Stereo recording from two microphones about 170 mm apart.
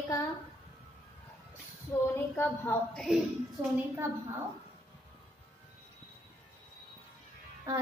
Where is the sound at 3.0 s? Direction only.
Centre (ahead or behind).